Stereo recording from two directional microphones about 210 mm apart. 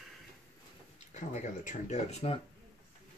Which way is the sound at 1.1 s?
35° left (ahead or behind).